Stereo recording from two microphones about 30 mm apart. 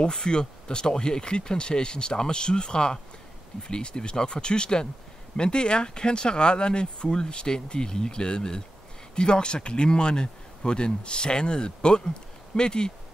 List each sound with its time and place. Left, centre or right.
0.1 s speech: left